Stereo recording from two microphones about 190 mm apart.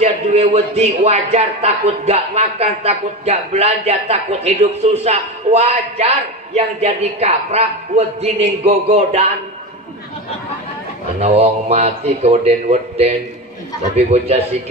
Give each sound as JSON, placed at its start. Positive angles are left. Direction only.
{"t": 0.0, "sound": "a man's voice", "side_deg": -35}
{"t": 11.1, "sound": "a man's voice", "side_deg": -35}